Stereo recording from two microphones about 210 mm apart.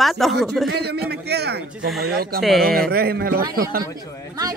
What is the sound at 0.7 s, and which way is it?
A man's voice, 50° right (ahead or behind).